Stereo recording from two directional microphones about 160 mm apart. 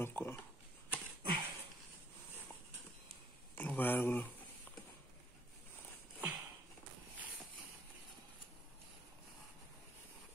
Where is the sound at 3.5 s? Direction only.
10° left (ahead or behind).